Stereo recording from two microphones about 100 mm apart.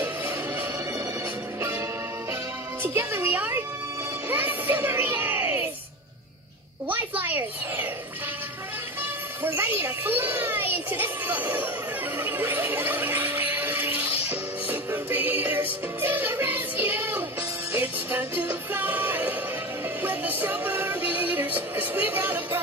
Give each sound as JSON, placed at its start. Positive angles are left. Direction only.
{"t": 2.8, "sound": "a child's voice", "side_deg": -25}
{"t": 6.9, "sound": "a child's voice", "side_deg": -20}
{"t": 9.4, "sound": "a child's voice", "side_deg": -20}
{"t": 12.2, "sound": "a sound", "side_deg": -20}
{"t": 14.3, "sound": "music", "side_deg": -20}